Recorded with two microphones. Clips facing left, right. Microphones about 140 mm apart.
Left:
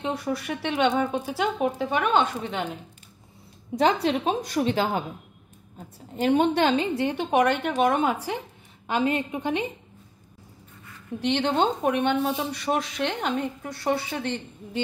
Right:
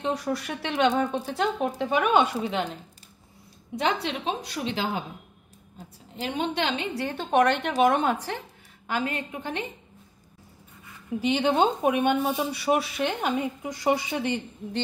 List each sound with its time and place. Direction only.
0.0 s speech: centre (ahead or behind)
1.8 s speech: 5° right (ahead or behind)
3.7 s a woman's voice: 40° left (ahead or behind)
6.2 s a woman's voice: 50° left (ahead or behind)
7.0 s a woman's voice: 20° left (ahead or behind)
7.2 s speech: 5° left (ahead or behind)
8.8 s a woman's voice: 20° left (ahead or behind)
11.1 s speech: 5° right (ahead or behind)